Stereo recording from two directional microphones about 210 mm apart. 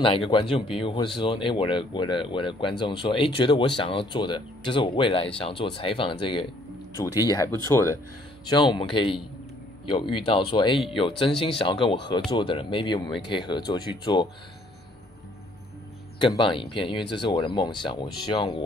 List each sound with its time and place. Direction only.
0.3 s speech: 25° left (ahead or behind)
16.2 s speech: 25° left (ahead or behind)